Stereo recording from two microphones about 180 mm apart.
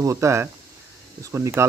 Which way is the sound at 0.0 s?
15° right (ahead or behind).